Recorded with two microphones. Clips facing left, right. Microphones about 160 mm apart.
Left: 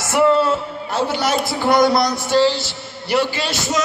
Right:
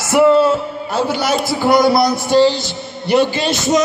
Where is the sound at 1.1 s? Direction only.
5° right (ahead or behind).